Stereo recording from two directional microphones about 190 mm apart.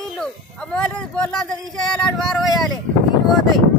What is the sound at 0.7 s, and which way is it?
Speech, 5° left (ahead or behind).